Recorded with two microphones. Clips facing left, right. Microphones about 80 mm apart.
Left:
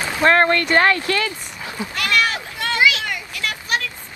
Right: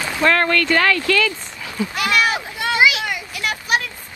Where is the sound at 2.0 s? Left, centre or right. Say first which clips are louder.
Right 1 dB; centre.